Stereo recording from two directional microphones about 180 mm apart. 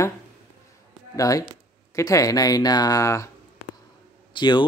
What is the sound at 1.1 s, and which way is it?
Speech, 20° left (ahead or behind).